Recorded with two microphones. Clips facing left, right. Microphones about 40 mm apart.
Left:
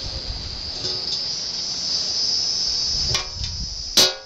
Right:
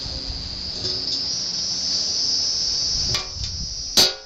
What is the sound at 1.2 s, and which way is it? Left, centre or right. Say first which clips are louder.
Cricket: right 1 dB; centre.